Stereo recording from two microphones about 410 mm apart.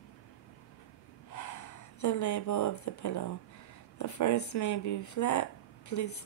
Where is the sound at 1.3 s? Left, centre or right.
Left.